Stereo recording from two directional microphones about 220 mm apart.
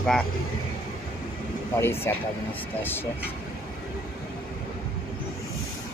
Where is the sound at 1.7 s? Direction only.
10° left (ahead or behind).